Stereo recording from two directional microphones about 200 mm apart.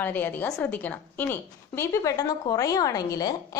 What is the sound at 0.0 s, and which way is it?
A woman's voice, 10° left (ahead or behind).